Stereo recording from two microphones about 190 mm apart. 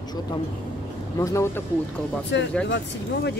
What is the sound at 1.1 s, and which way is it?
Speech, 15° left (ahead or behind).